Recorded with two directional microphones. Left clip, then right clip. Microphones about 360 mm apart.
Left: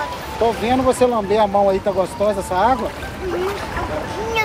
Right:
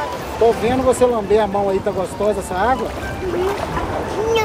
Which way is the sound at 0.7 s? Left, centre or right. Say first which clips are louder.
Right 1 dB; centre.